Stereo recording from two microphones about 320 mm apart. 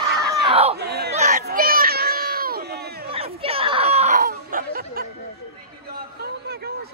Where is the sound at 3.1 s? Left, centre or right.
Centre.